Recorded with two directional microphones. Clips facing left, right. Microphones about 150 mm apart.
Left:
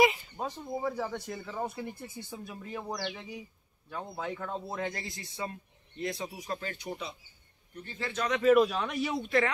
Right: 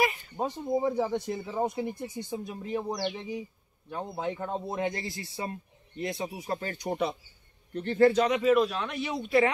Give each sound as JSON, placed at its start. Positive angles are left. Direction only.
{"t": 0.4, "sound": "speech", "side_deg": -25}
{"t": 6.6, "sound": "speech", "side_deg": -40}
{"t": 7.7, "sound": "speech", "side_deg": -70}
{"t": 8.3, "sound": "speech", "side_deg": 0}